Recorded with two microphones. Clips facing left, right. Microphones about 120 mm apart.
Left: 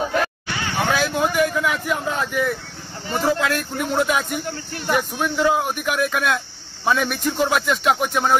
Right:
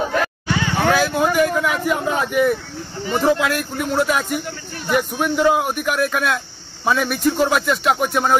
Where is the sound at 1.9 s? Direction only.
5° right (ahead or behind); by 3.3 s 20° right (ahead or behind).